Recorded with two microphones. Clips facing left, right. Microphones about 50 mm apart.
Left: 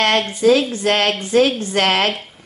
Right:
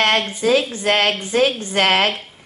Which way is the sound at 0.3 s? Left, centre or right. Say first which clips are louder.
Left 3 dB; right.